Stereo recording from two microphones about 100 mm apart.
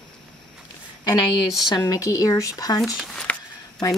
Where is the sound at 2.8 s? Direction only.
5° right (ahead or behind).